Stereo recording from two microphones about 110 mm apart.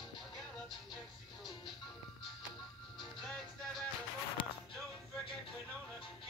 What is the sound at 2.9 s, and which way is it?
Music, 5° left (ahead or behind).